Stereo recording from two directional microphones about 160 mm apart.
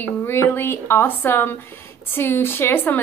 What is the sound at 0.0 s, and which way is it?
Speech, 15° left (ahead or behind).